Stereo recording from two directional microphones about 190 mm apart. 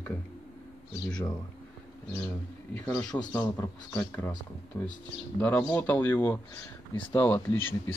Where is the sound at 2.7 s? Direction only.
15° left (ahead or behind).